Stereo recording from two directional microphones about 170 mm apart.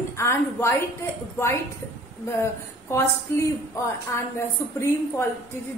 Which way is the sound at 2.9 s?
15° left (ahead or behind).